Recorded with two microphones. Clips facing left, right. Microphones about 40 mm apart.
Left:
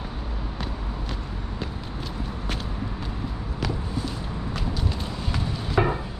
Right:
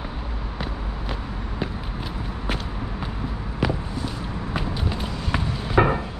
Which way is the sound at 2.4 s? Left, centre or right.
Centre.